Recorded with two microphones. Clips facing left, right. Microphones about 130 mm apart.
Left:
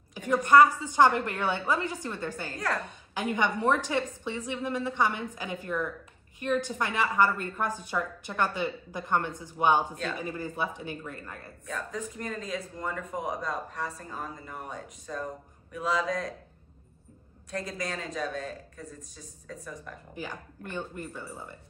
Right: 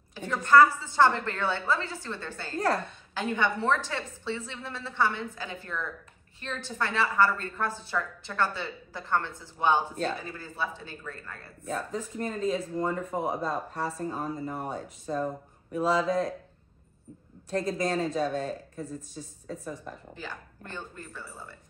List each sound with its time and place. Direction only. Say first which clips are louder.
0.1 s a woman's voice: left 1 dB; 15° left (ahead or behind)
11.6 s speech: right 3 dB; 35° right (ahead or behind)
17.5 s speech: right 6 dB; 30° right (ahead or behind)
20.2 s a woman's voice: left 2 dB; 15° left (ahead or behind)